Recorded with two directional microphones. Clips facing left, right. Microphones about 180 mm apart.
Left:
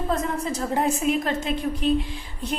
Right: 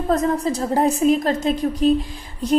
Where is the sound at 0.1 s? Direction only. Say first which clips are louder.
Right 8 dB; 35° right (ahead or behind).